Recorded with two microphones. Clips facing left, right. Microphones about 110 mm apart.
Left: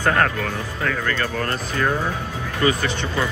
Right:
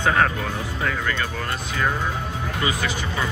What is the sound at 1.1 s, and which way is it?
Speech, 10° right (ahead or behind).